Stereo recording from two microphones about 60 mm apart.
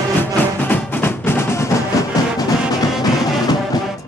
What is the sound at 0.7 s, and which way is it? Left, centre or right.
Music, left.